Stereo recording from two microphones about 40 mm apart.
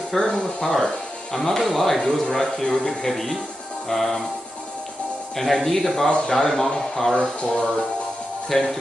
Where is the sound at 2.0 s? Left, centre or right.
Centre.